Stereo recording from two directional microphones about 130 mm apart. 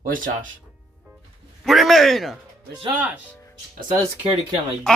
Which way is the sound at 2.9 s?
10° right (ahead or behind).